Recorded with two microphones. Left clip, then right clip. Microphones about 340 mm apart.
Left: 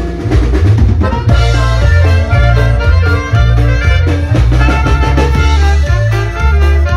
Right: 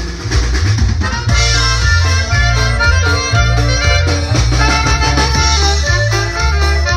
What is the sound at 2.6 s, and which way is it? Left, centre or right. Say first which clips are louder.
Music: right 2 dB; centre.